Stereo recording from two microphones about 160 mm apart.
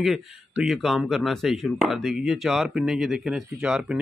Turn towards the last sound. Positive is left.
turn(degrees=-5)  # may be behind; listen again after turning